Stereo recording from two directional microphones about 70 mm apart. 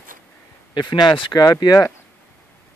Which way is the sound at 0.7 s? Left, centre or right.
Left.